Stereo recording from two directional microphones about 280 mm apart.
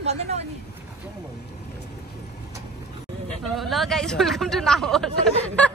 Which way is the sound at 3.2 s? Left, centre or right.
Centre.